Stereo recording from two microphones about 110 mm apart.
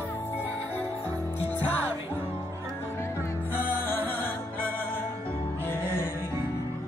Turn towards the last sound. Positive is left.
turn(degrees=20)  # may be behind; listen again after turning